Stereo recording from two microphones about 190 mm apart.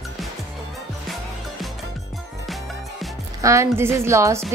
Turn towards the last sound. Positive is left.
turn(degrees=-15)  # may be behind; listen again after turning